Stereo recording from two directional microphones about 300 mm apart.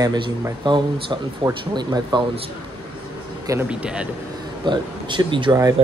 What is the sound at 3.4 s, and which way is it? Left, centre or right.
Speech, centre.